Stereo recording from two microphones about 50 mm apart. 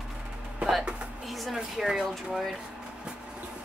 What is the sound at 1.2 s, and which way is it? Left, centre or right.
Speech, centre.